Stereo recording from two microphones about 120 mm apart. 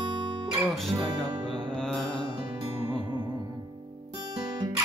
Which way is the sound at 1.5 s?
5° left (ahead or behind).